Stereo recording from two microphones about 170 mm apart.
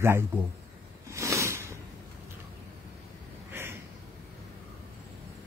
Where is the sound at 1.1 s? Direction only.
15° right (ahead or behind).